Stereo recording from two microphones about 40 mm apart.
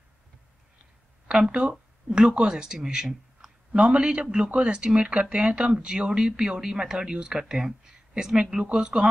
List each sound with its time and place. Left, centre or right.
2.0 s speech: right
3.7 s speech: right